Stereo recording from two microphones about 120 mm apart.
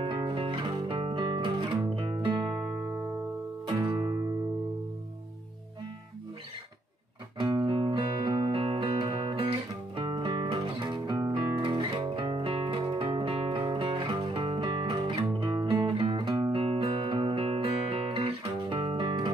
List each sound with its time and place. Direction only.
0.0 s music: 45° right (ahead or behind)
3.9 s music: 45° right (ahead or behind)
7.3 s music: 40° right (ahead or behind)